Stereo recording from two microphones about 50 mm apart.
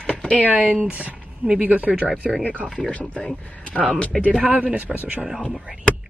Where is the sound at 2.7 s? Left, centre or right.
Left.